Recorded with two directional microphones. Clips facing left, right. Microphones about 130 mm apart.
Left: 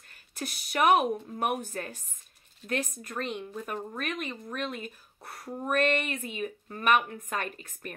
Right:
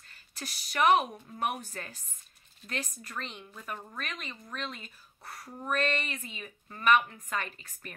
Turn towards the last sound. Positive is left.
turn(degrees=50)  # may be behind; listen again after turning